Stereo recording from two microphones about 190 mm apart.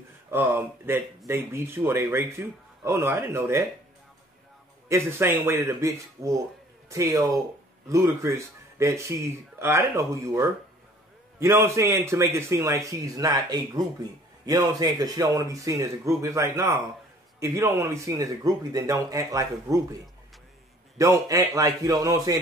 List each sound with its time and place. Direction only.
0.3 s speech: 10° right (ahead or behind)
4.8 s speech: 15° right (ahead or behind)
21.0 s speech: 15° right (ahead or behind)